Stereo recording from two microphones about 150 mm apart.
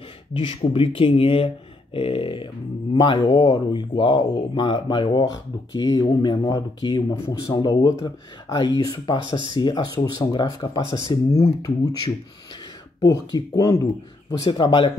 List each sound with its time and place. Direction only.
0.3 s speech: 35° left (ahead or behind)
13.0 s speech: 25° left (ahead or behind)